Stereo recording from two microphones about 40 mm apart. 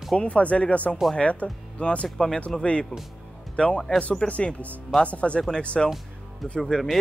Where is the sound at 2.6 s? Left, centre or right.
Left.